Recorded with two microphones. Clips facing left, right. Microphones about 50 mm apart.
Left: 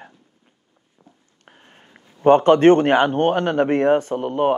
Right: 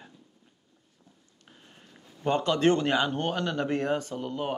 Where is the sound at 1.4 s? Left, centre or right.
Left.